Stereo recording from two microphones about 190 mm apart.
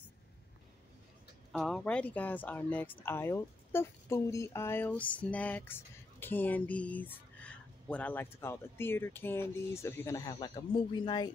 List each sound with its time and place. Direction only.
1.5 s speech: 5° left (ahead or behind); by 11.3 s 25° left (ahead or behind)